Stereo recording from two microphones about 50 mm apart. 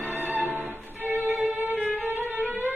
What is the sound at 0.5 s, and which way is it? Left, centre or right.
Music, right.